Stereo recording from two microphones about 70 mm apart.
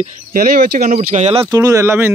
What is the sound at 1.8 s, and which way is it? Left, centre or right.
Speech, right.